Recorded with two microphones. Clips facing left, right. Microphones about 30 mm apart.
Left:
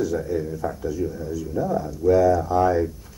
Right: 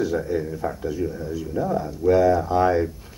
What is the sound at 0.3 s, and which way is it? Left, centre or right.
Speech, right.